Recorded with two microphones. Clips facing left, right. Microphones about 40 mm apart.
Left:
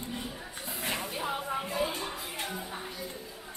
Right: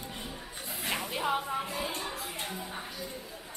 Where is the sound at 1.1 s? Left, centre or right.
Right.